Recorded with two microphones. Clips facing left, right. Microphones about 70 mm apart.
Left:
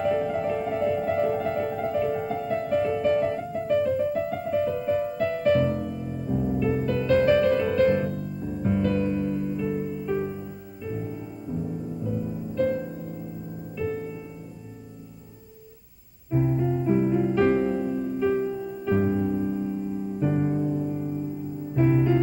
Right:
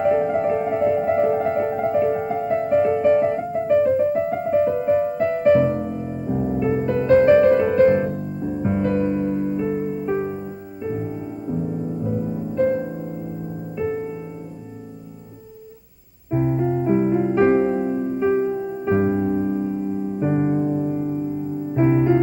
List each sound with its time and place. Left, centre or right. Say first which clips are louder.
0.0 s music: right 6 dB; right
16.3 s keyboard: right 4 dB; right
21.7 s music: right 4 dB; right